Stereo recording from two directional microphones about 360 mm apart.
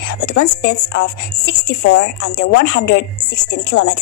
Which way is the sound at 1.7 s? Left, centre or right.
Left.